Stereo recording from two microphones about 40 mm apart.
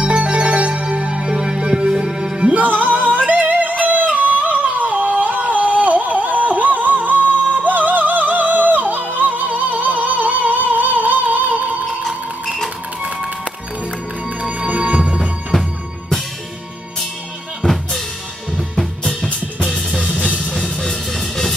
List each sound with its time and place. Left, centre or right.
0.0 s music: right
2.5 s music: right
14.4 s music: right
17.6 s drum kit: centre
19.6 s music: centre
20.2 s music: right
20.5 s music: centre